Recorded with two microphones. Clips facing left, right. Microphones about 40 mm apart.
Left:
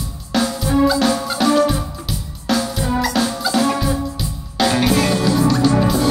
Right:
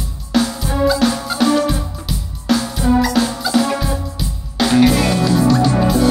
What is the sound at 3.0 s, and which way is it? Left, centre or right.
Music, centre.